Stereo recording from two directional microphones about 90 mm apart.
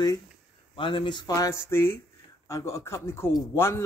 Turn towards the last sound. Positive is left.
turn(degrees=30)  # may be behind; listen again after turning